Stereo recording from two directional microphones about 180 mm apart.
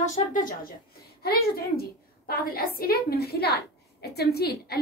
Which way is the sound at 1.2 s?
60° left (ahead or behind).